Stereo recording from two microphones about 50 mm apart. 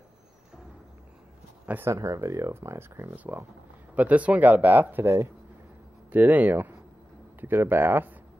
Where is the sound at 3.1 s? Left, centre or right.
Right.